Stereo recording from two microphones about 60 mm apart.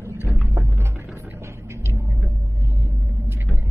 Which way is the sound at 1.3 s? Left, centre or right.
Right.